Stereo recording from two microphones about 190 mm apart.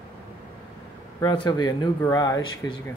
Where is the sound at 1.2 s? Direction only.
20° left (ahead or behind).